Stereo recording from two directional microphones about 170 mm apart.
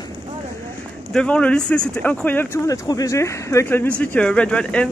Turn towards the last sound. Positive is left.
turn(degrees=5)  # may be behind; listen again after turning